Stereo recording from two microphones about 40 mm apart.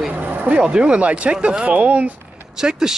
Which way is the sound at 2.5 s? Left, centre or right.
Centre.